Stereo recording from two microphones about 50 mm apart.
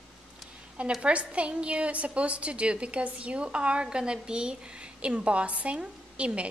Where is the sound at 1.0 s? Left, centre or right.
Right.